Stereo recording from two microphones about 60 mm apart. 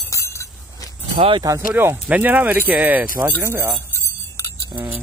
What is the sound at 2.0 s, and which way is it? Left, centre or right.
Speech, right.